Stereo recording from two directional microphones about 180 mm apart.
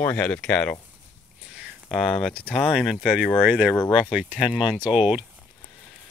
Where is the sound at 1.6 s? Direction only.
Centre (ahead or behind).